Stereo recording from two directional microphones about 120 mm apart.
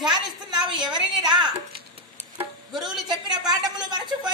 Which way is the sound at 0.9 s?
40° right (ahead or behind).